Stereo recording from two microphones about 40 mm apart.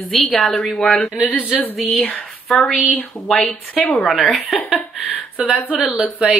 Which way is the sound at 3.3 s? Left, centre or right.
Centre.